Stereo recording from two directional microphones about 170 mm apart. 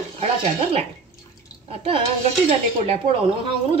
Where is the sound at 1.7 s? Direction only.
35° right (ahead or behind).